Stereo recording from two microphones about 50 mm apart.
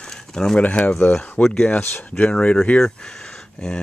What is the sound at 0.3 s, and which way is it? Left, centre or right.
Speech, centre.